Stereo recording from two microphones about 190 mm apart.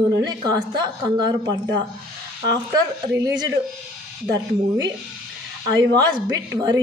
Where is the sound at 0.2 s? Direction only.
20° right (ahead or behind).